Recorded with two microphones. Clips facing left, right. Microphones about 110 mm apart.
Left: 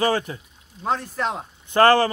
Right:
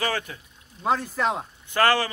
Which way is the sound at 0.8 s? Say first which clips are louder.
Right 1 dB; centre (ahead or behind).